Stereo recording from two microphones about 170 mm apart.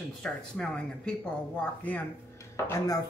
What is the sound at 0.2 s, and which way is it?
Speech, 5° left (ahead or behind).